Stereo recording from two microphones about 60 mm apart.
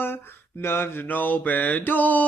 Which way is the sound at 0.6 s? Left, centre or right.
Left.